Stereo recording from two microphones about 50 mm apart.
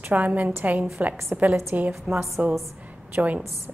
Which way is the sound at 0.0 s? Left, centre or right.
Right.